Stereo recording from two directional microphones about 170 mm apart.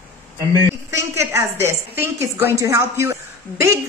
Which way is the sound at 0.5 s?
15° right (ahead or behind).